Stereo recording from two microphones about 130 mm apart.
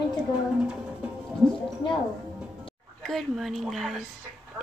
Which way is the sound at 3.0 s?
5° left (ahead or behind).